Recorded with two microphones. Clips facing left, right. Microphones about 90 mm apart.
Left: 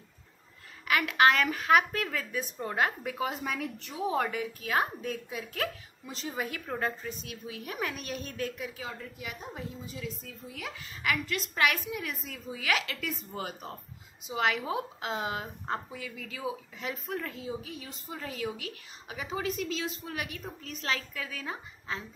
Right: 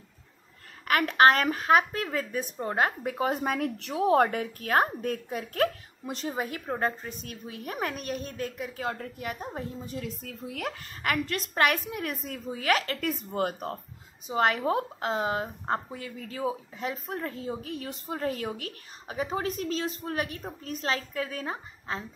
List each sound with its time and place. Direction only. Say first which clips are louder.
0.8 s a woman's voice: right 3 dB; 45° right (ahead or behind)
3.7 s speech: right 10 dB; 80° right
4.2 s a woman's voice: right 6 dB; 50° right (ahead or behind)
6.3 s a woman's voice: left 1 dB; 30° right (ahead or behind)
8.8 s a woman's voice: right 7 dB; 55° right (ahead or behind); by 17.5 s 35° right (ahead or behind)
17.5 s a woman's voice: right 4 dB; 50° right (ahead or behind)